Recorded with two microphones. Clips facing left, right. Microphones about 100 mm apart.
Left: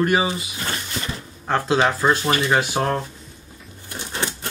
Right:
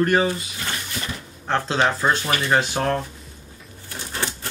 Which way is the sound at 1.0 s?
30° left (ahead or behind).